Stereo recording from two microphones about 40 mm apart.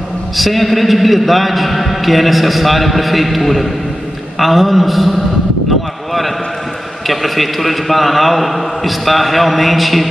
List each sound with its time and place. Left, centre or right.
0.4 s a man's voice: centre
7.1 s a man's voice: centre